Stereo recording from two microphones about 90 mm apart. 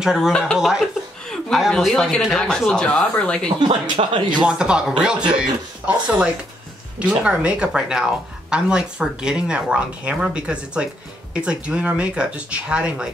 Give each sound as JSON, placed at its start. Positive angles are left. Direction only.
{"t": 0.0, "sound": "a woman's voice", "side_deg": -5}
{"t": 0.3, "sound": "speech", "side_deg": 5}
{"t": 0.6, "sound": "a woman's voice", "side_deg": -5}
{"t": 3.8, "sound": "speech", "side_deg": -60}
{"t": 4.5, "sound": "speech", "side_deg": -10}